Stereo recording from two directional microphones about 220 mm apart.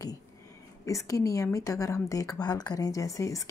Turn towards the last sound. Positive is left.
turn(degrees=15)  # may be behind; listen again after turning